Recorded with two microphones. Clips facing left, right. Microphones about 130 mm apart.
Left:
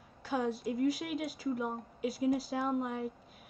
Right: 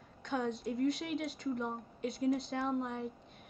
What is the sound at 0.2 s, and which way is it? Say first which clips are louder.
A woman's voice: left 2 dB; 5° left (ahead or behind).